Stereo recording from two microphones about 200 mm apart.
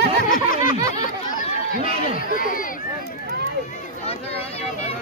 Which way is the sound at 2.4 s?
45° left (ahead or behind).